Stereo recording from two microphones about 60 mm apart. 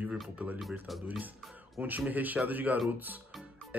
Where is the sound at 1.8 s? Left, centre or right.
Right.